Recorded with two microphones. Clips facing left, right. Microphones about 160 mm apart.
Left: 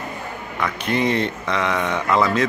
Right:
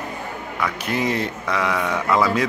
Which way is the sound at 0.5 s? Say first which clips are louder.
Left 2 dB; 5° right (ahead or behind).